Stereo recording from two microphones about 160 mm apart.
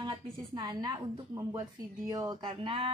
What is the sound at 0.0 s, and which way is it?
A woman's voice, 25° right (ahead or behind).